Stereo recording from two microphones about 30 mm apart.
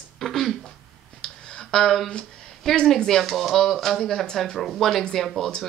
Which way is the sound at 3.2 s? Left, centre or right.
Centre.